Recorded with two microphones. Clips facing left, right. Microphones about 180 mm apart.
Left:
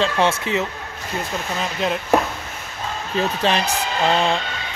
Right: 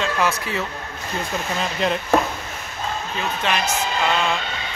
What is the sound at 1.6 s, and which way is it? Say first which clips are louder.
Speech: even; centre (ahead or behind).